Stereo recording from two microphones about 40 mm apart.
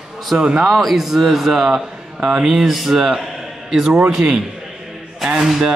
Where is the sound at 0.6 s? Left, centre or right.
Centre.